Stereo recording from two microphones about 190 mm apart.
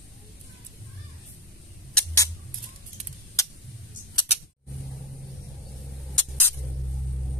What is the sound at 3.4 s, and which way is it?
Tick-tock, 15° left (ahead or behind).